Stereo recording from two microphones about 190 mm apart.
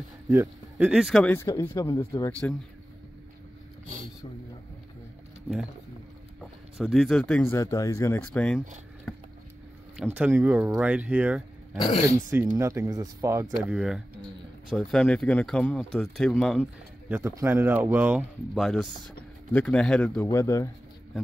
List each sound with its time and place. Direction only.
0.3 s speech: 10° right (ahead or behind); by 2.5 s 15° left (ahead or behind)
6.8 s speech: centre (ahead or behind); by 8.2 s 15° left (ahead or behind)
8.3 s speech: 5° left (ahead or behind)
9.1 s a sound: 5° left (ahead or behind)
9.9 s speech: 5° right (ahead or behind)
13.6 s speech: 5° right (ahead or behind)
17.1 s speech: 10° right (ahead or behind); by 20.2 s 5° left (ahead or behind)
20.2 s speech: 15° left (ahead or behind)